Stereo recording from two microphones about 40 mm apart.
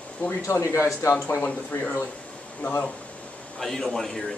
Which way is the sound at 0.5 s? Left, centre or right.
Left.